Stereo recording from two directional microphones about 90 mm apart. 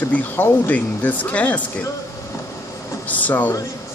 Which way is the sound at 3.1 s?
20° left (ahead or behind).